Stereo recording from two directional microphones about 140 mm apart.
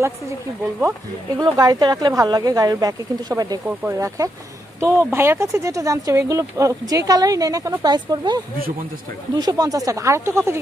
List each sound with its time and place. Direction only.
1.3 s speech: 25° right (ahead or behind)
3.6 s speech: 10° right (ahead or behind)